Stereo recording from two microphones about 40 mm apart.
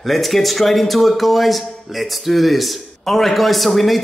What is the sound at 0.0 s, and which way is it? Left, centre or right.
Speech, centre.